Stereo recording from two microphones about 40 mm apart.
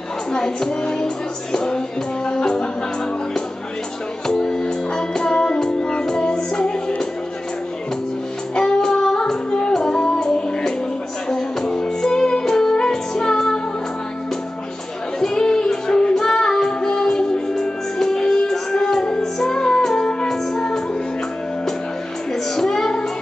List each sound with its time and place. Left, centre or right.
0.3 s music: centre
4.3 s music: centre
8.5 s music: centre
15.1 s music: centre
22.3 s music: centre